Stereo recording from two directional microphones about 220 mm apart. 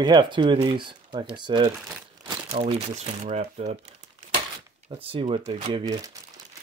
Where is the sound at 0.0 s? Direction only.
20° right (ahead or behind).